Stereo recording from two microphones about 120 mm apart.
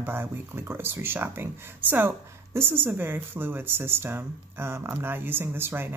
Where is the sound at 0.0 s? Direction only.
20° right (ahead or behind).